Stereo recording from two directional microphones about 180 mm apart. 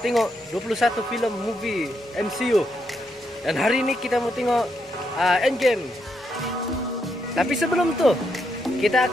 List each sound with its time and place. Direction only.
0.0 s speech: centre (ahead or behind)
7.3 s speech: centre (ahead or behind)